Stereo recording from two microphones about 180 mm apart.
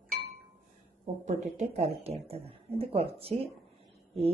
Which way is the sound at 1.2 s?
40° right (ahead or behind).